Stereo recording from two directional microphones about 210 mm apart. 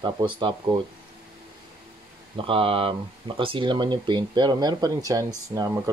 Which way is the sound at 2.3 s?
25° right (ahead or behind).